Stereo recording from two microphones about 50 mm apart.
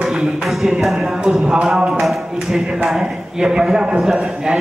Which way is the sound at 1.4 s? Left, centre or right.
Right.